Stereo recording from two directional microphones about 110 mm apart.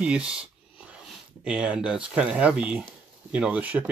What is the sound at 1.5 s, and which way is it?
Speech, 10° right (ahead or behind).